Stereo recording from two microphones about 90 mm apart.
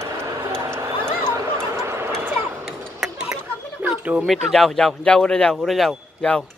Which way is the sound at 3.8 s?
15° right (ahead or behind).